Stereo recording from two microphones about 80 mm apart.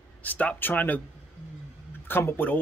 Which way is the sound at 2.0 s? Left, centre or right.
Left.